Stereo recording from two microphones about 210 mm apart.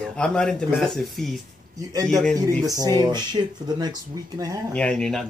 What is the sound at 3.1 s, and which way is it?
Speech, 20° right (ahead or behind).